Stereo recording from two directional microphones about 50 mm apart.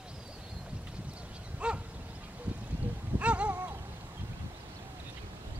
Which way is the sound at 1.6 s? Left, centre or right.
Right.